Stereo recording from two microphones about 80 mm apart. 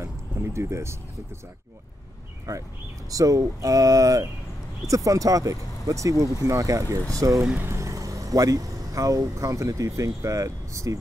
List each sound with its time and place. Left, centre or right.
0.0 s music: right
2.5 s speech: right
7.5 s speech: right
7.8 s speech: right